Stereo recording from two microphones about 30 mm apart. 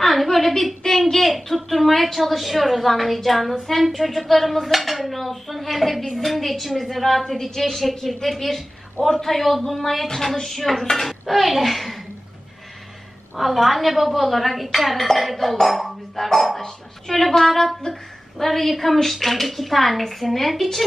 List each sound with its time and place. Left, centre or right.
0.0 s a sound: centre
1.3 s a woman's voice: centre
7.3 s speech: centre
13.4 s speech: centre
17.9 s a woman's voice: left
18.4 s speech: centre